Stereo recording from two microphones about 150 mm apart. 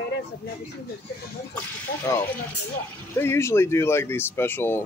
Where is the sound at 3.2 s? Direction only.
15° left (ahead or behind).